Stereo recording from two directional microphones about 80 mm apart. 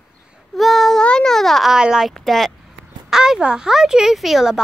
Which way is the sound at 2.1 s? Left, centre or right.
Centre.